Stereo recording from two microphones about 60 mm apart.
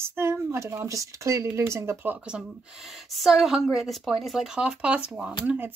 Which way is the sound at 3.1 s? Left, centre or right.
Centre.